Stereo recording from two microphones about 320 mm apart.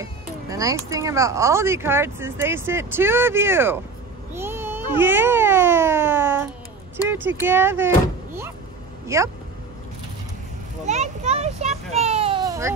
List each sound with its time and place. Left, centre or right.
0.0 s a child's voice: centre
9.0 s speech: centre
10.9 s children playing: right